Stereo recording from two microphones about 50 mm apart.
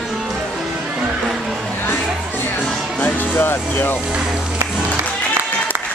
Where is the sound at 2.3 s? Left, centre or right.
Left.